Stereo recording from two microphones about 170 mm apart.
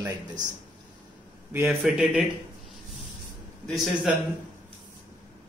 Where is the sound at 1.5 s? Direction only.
10° right (ahead or behind).